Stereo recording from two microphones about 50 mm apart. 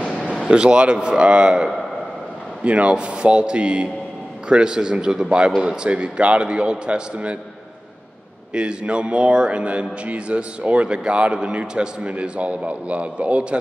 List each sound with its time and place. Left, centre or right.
0.0 s a sound: left
0.5 s a man's voice: centre
8.5 s speech: right